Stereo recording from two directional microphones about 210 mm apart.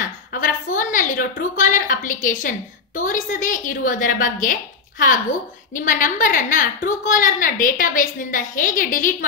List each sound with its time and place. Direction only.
0.3 s a woman's voice: 40° left (ahead or behind)